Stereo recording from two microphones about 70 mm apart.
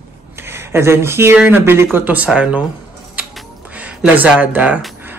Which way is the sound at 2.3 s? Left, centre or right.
Centre.